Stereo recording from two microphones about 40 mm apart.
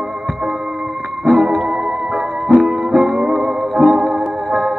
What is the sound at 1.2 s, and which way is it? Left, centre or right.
Music, centre.